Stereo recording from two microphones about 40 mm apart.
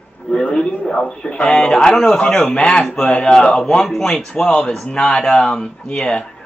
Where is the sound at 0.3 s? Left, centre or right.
Centre.